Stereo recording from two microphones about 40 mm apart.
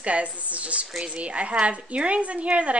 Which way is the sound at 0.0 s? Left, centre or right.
Right.